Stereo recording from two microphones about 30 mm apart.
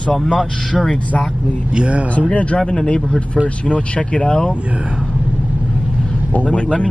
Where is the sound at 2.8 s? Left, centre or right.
Left.